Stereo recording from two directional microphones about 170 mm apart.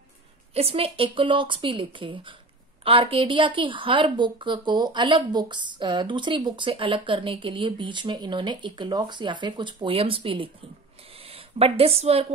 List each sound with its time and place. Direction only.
0.6 s a woman's voice: 35° right (ahead or behind)